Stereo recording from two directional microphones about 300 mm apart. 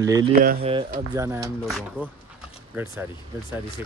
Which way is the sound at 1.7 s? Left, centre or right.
Centre.